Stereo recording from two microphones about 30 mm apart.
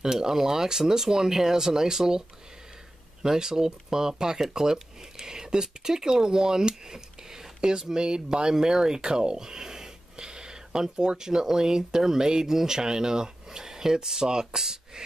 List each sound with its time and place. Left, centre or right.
0.0 s speech: centre